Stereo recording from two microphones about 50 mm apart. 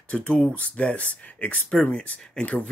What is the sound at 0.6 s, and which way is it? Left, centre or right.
Speech, left.